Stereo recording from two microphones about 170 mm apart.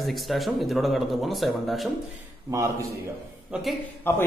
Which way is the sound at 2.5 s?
20° right (ahead or behind).